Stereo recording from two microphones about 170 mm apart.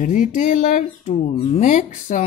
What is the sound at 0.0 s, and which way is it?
Speech, 50° left (ahead or behind).